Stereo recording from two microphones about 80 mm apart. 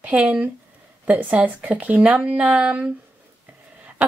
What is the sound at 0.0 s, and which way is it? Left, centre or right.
A woman's voice, centre.